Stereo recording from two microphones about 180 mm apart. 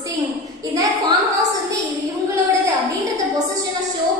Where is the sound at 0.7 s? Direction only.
20° right (ahead or behind).